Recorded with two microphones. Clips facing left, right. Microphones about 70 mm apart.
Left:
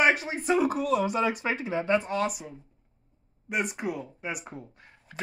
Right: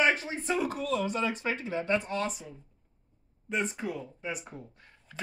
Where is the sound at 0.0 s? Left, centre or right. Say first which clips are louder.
Left 3 dB; centre.